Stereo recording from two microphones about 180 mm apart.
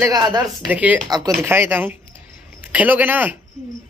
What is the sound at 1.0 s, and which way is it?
A man's voice, 20° right (ahead or behind).